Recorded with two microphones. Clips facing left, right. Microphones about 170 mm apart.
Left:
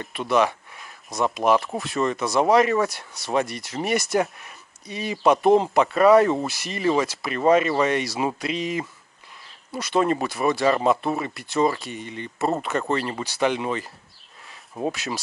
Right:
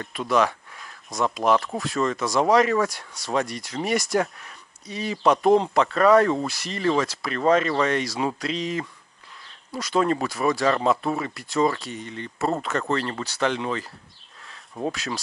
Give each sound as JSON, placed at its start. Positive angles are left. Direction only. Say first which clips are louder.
{"t": 0.1, "sound": "speech", "louder": "left 1 dB", "side_deg": 0}
{"t": 0.5, "sound": "a sound", "louder": "left 1 dB", "side_deg": 0}
{"t": 1.4, "sound": "speech", "louder": "left 1 dB", "side_deg": 5}
{"t": 2.0, "sound": "speech", "louder": "left 1 dB", "side_deg": 15}
{"t": 2.2, "sound": "speech", "louder": "left 1 dB", "side_deg": 0}
{"t": 9.9, "sound": "speech", "louder": "left 1 dB", "side_deg": 10}
{"t": 10.2, "sound": "speech", "louder": "left 1 dB", "side_deg": 0}
{"t": 12.0, "sound": "speech", "louder": "left 2 dB", "side_deg": 15}
{"t": 14.5, "sound": "a sound", "louder": "left 1 dB", "side_deg": 5}